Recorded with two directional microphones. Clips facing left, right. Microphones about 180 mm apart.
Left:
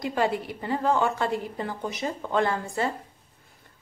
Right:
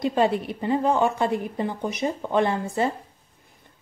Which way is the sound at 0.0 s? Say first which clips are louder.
Right 4 dB; 25° right (ahead or behind).